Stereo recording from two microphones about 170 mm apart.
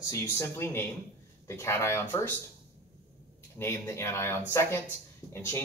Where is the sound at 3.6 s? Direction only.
15° left (ahead or behind).